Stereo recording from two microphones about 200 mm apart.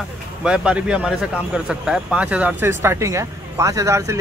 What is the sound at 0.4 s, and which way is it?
A man's voice, 5° right (ahead or behind).